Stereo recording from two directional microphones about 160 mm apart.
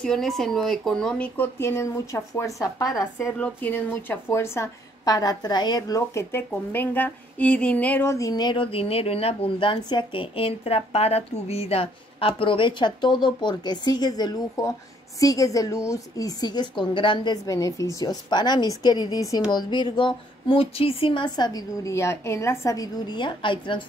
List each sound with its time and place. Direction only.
0.0 s a woman's voice: 5° left (ahead or behind); by 23.8 s 30° left (ahead or behind)